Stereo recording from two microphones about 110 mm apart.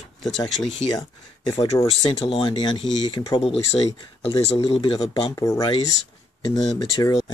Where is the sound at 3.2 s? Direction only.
60° left (ahead or behind).